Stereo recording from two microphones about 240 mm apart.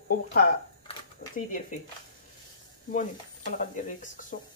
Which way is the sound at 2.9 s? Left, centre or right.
Left.